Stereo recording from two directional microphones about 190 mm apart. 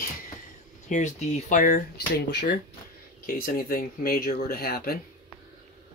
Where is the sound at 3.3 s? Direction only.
50° left (ahead or behind).